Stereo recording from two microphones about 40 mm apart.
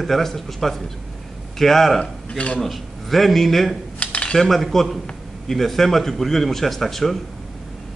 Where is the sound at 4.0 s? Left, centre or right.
Left.